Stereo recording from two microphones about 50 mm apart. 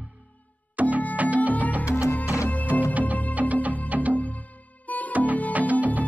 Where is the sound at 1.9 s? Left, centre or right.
Left.